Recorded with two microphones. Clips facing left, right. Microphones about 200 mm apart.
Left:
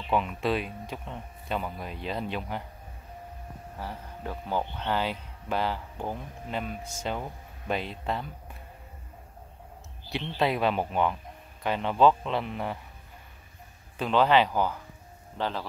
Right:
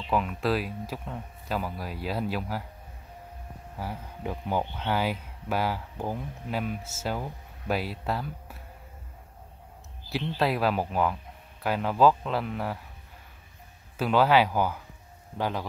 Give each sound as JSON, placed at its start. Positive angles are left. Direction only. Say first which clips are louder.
{"t": 0.1, "sound": "speech", "louder": "even", "side_deg": 0}
{"t": 3.7, "sound": "speech", "louder": "right 2 dB", "side_deg": -10}
{"t": 10.0, "sound": "speech", "louder": "even", "side_deg": 0}
{"t": 13.9, "sound": "speech", "louder": "right 1 dB", "side_deg": -5}